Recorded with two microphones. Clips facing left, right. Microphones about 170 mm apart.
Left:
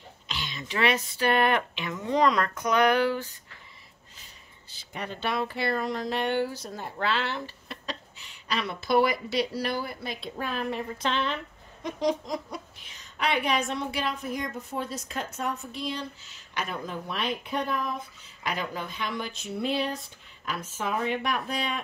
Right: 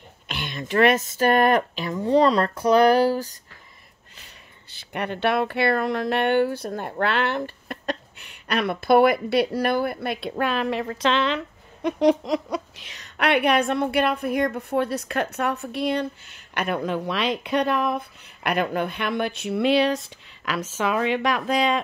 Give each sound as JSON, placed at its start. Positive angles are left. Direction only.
{"t": 0.3, "sound": "speech", "side_deg": -55}
{"t": 4.2, "sound": "speech", "side_deg": -65}